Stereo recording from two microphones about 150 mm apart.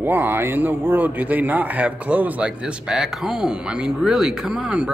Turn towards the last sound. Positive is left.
turn(degrees=-5)  # may be behind; listen again after turning